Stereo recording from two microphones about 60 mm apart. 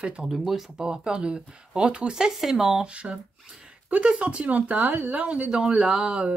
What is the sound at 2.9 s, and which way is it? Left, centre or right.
Speech, centre.